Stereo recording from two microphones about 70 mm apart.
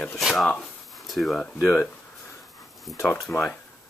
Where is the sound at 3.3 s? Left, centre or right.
Left.